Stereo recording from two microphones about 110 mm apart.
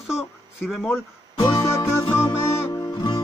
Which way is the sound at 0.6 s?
5° right (ahead or behind).